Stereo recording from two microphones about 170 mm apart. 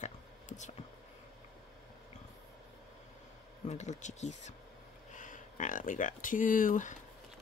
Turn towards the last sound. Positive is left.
turn(degrees=45)  # may be behind; listen again after turning